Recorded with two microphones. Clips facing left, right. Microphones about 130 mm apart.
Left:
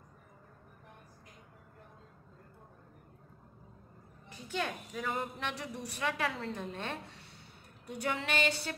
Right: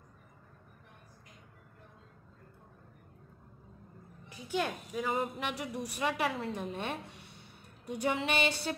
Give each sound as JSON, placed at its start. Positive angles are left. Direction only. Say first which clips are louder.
{"t": 4.5, "sound": "a woman's voice", "louder": "right 3 dB", "side_deg": -10}